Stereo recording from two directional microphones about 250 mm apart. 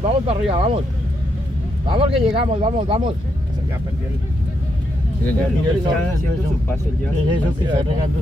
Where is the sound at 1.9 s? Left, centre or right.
Right.